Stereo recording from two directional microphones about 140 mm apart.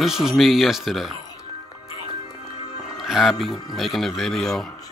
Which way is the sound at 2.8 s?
Centre (ahead or behind).